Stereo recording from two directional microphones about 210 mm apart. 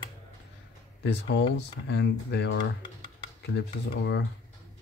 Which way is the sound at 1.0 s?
55° left (ahead or behind).